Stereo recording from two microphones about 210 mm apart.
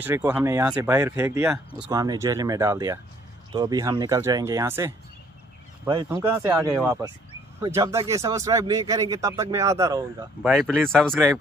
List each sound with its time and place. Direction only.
0.0 s speech: 10° right (ahead or behind)
6.0 s speech: 10° right (ahead or behind)
10.4 s speech: centre (ahead or behind)